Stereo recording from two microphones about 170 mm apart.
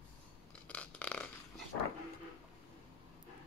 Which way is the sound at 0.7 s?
5° left (ahead or behind).